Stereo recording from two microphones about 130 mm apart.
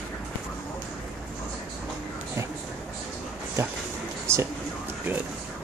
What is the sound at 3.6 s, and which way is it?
Speech, 20° right (ahead or behind).